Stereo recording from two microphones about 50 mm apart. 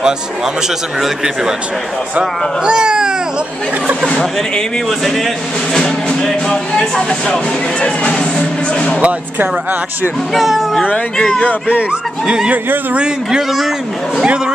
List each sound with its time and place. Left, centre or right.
2.1 s speech: centre
4.1 s speech: centre
4.8 s speech: centre
9.0 s speech: right
10.3 s speech: centre
10.8 s speech: left
12.9 s speech: centre